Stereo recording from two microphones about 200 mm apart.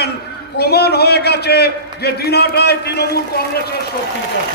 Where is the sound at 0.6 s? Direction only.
55° left (ahead or behind).